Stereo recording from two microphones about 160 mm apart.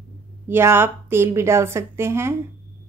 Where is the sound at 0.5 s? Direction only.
15° right (ahead or behind).